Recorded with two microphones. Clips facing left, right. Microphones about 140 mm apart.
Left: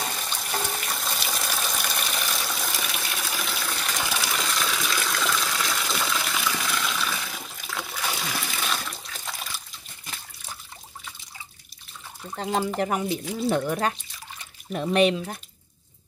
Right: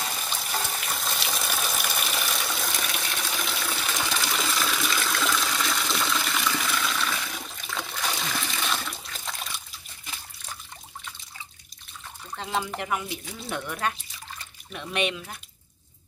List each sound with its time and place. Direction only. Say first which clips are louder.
0.3 s water: left 1 dB; centre (ahead or behind)
12.4 s speech: left 5 dB; 40° left (ahead or behind)